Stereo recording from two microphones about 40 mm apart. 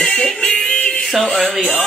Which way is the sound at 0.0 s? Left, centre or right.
Centre.